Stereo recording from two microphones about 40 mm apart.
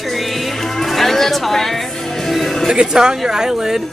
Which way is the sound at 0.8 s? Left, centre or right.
Centre.